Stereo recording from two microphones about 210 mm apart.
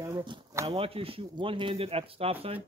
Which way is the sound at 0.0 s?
20° right (ahead or behind).